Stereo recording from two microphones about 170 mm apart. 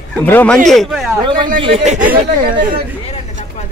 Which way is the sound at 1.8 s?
40° right (ahead or behind).